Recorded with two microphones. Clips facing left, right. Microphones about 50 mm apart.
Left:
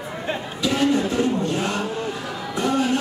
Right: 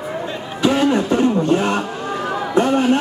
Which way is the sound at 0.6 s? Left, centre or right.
Right.